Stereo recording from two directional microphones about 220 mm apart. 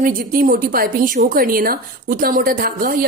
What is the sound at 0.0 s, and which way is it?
A woman's voice, 40° right (ahead or behind).